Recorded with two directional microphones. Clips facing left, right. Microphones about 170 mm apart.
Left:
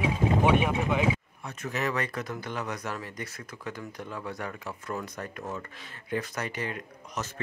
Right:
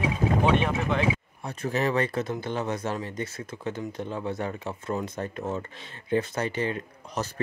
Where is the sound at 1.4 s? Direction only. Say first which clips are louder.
Right 5 dB; 30° right (ahead or behind).